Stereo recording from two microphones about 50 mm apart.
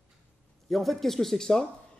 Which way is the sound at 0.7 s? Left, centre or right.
Centre.